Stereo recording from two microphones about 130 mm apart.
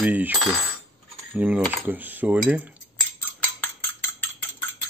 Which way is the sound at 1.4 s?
15° right (ahead or behind).